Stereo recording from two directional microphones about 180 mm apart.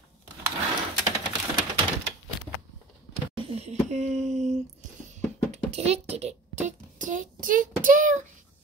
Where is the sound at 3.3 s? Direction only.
35° right (ahead or behind).